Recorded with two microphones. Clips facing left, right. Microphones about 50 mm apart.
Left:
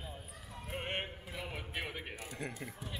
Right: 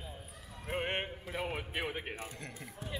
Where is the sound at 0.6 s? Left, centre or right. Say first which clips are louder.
Right 4 dB; centre.